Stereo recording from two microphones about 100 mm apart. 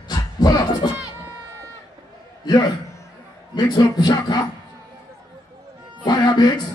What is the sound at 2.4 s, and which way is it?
A man's voice, 45° left (ahead or behind).